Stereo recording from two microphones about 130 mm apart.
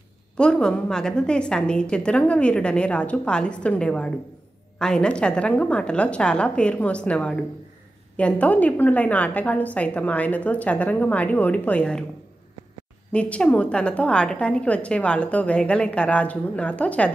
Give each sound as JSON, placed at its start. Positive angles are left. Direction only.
{"t": 0.4, "sound": "a woman's voice", "side_deg": 5}
{"t": 13.1, "sound": "a woman's voice", "side_deg": 10}